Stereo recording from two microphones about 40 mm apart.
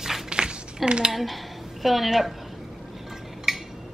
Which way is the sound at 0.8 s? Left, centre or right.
Right.